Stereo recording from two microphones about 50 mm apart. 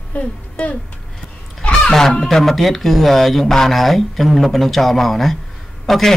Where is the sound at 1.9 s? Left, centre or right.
Centre.